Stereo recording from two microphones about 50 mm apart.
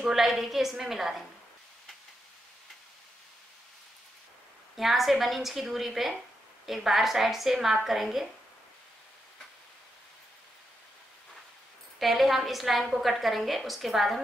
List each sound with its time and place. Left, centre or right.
0.0 s a woman's voice: centre
4.7 s a woman's voice: centre
12.0 s a woman's voice: centre